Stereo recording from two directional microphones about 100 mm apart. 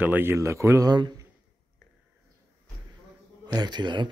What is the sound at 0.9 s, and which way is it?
Speech, 45° right (ahead or behind).